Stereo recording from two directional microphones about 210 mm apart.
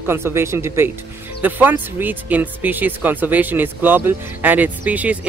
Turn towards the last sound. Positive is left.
turn(degrees=-5)  # may be behind; listen again after turning